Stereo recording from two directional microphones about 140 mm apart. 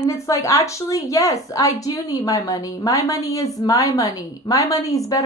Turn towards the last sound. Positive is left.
turn(degrees=25)  # may be behind; listen again after turning